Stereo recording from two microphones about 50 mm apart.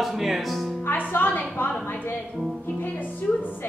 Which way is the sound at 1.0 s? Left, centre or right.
Left.